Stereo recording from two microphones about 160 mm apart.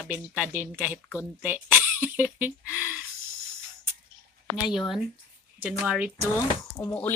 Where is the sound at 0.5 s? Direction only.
10° right (ahead or behind).